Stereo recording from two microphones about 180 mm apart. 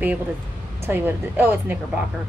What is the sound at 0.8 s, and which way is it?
Speech, 10° right (ahead or behind).